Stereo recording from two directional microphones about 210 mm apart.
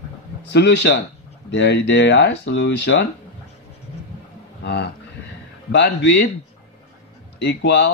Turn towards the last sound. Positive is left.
turn(degrees=55)  # may be behind; listen again after turning